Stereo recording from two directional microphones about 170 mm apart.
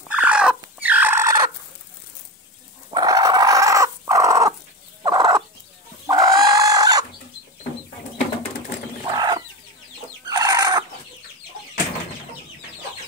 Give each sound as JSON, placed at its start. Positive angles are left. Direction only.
{"t": 0.1, "sound": "fowl", "side_deg": -5}
{"t": 2.9, "sound": "dog", "side_deg": -20}
{"t": 5.0, "sound": "fowl", "side_deg": -20}
{"t": 6.0, "sound": "chicken", "side_deg": -20}
{"t": 9.0, "sound": "chicken", "side_deg": -25}